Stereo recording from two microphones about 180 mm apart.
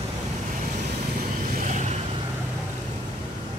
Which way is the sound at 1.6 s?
40° right (ahead or behind).